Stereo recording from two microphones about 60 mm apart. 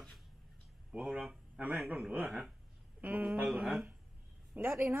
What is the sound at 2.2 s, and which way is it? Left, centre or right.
Speech, centre.